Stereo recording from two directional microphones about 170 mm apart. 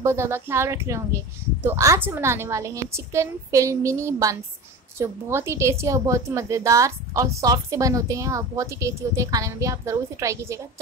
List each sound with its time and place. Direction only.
0.0 s a woman's voice: 15° right (ahead or behind)